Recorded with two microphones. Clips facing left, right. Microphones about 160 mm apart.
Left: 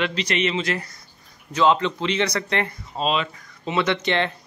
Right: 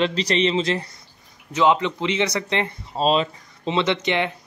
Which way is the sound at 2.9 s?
35° right (ahead or behind).